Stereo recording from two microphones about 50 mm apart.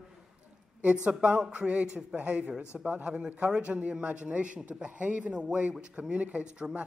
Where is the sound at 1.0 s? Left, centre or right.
Right.